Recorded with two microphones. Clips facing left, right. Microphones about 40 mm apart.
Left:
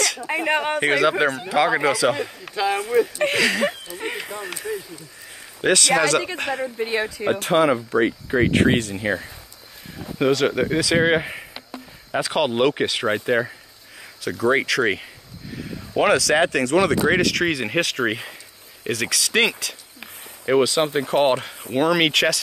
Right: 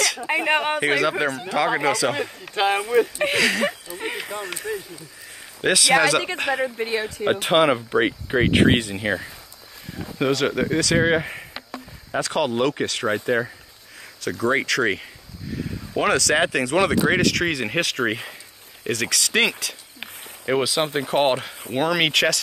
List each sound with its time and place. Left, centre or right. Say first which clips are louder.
0.4 s speech: even; centre
0.7 s speech: left 2 dB; centre
2.5 s speech: right 2 dB; right
3.2 s speech: left 1 dB; centre
4.0 s a sound: even; centre
4.5 s speech: even; centre
7.4 s speech: even; right
7.7 s speech: left 1 dB; right
10.1 s speech: left 2 dB; centre
12.4 s speech: left 2 dB; left
14.2 s speech: left 2 dB; centre